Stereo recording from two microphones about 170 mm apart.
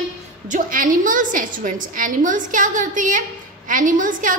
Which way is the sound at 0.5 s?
50° right (ahead or behind).